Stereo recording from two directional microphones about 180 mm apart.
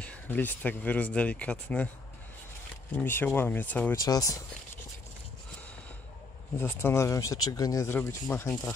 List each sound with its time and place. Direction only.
0.0 s speech: 10° left (ahead or behind)
2.9 s speech: 10° left (ahead or behind)
4.0 s speech: 20° left (ahead or behind)
6.5 s speech: 15° left (ahead or behind)